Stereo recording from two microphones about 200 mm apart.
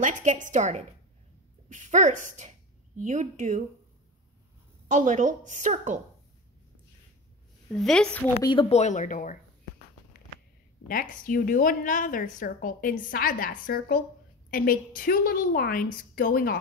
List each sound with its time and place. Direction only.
0.0 s a woman's voice: 40° right (ahead or behind)
4.8 s a woman's voice: 40° right (ahead or behind)
7.7 s a woman's voice: 5° left (ahead or behind)
8.5 s speech: 30° left (ahead or behind)
10.9 s a woman's voice: 45° left (ahead or behind)